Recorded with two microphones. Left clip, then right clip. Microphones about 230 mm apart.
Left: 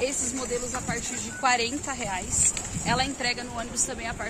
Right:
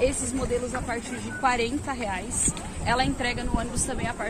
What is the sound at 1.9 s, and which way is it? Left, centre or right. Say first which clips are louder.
Speech: right 1 dB; centre.